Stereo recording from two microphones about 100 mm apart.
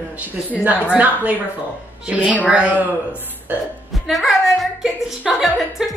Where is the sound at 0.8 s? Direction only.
15° right (ahead or behind).